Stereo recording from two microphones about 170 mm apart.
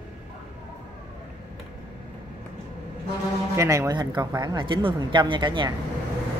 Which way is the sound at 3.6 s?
20° right (ahead or behind).